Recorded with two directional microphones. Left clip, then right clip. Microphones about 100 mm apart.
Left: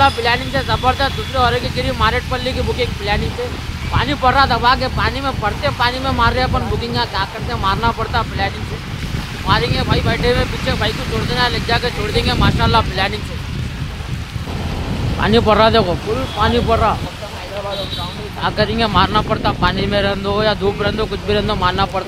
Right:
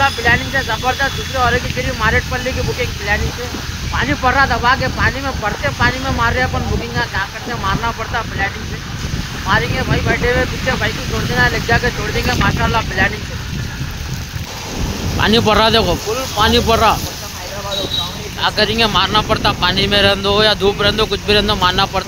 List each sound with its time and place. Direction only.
0.0 s speech: 25° left (ahead or behind)
3.9 s speech: 25° left (ahead or behind)
11.3 s speech: 20° left (ahead or behind)
15.1 s speech: 15° right (ahead or behind)
18.4 s speech: 15° right (ahead or behind)